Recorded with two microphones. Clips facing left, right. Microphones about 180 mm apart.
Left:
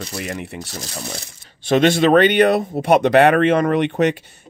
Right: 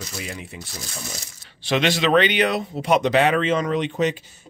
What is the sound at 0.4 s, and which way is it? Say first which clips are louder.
Speech: left 7 dB; 65° left (ahead or behind).